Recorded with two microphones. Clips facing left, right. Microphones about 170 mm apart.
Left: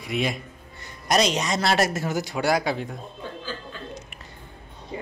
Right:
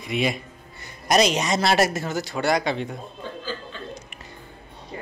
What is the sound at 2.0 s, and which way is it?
A man's voice, 10° left (ahead or behind).